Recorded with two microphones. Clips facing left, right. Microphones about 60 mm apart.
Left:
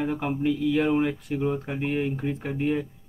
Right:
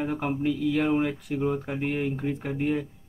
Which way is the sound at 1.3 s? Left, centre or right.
Centre.